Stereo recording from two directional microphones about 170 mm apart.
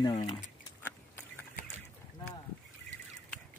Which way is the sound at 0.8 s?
15° left (ahead or behind).